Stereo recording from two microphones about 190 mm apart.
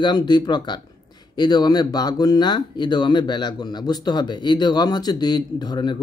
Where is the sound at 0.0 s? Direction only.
20° left (ahead or behind).